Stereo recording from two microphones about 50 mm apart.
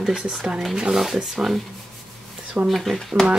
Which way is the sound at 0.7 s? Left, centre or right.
Centre.